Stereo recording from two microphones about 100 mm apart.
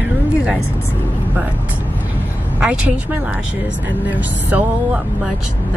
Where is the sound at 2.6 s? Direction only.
10° right (ahead or behind).